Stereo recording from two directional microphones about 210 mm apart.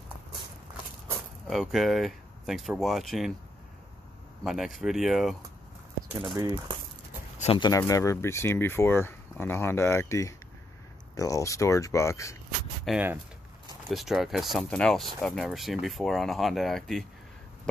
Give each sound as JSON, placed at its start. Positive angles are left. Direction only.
{"t": 1.5, "sound": "speech", "side_deg": 0}
{"t": 4.4, "sound": "speech", "side_deg": 0}
{"t": 6.3, "sound": "speech", "side_deg": -20}
{"t": 7.3, "sound": "speech", "side_deg": 25}
{"t": 12.8, "sound": "speech", "side_deg": -5}